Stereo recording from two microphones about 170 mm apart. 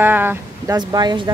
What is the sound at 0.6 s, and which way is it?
Speech, 25° right (ahead or behind).